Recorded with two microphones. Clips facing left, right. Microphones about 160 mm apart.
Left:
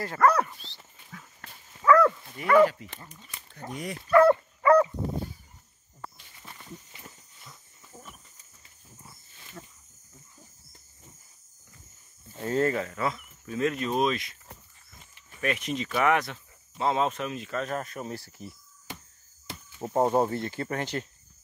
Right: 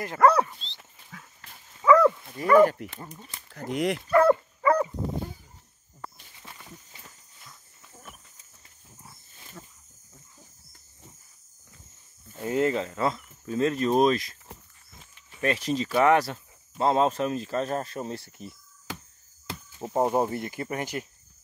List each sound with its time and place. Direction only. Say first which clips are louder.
0.0 s speech: right 2 dB; 20° right (ahead or behind)
1.9 s dog: right 2 dB; 20° right (ahead or behind)
2.3 s speech: right 1 dB; 40° right (ahead or behind)
3.5 s speech: right 9 dB; 90° right
12.4 s speech: right 1 dB; 15° right (ahead or behind); by 14.3 s 40° right (ahead or behind)
15.4 s speech: right 3 dB; 35° right (ahead or behind)
18.9 s a sound: right 4 dB; 90° right
19.8 s speech: left 1 dB; 10° right (ahead or behind)